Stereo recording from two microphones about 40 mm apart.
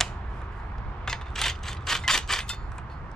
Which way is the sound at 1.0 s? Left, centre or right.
Centre.